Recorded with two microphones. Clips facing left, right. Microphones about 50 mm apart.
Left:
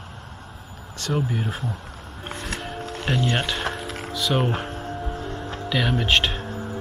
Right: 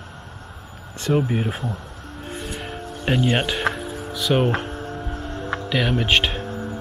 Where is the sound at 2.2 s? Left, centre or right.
Left.